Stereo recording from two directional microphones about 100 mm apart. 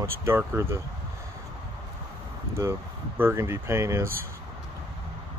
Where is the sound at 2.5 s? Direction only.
25° right (ahead or behind).